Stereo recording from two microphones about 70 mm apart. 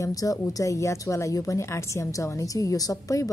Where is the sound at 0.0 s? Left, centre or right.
Left.